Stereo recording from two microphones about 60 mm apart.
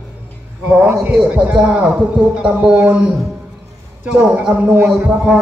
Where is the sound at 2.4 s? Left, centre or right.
Centre.